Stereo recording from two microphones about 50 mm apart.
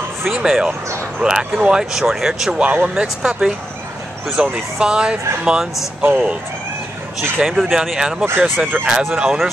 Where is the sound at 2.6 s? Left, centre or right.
Right.